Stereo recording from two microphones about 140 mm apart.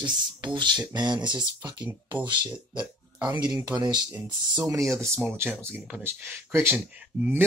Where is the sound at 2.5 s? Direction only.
10° right (ahead or behind).